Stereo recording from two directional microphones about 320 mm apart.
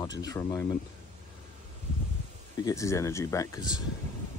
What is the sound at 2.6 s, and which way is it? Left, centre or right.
Speech, centre.